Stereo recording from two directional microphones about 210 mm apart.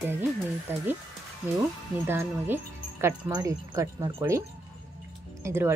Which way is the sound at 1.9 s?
10° right (ahead or behind).